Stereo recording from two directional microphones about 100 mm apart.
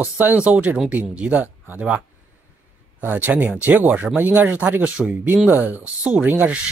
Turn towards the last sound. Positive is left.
turn(degrees=-15)  # may be behind; listen again after turning